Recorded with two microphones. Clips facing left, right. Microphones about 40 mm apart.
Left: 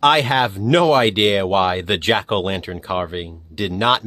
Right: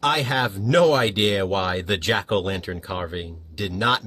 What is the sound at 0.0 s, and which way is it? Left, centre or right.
Speech, left.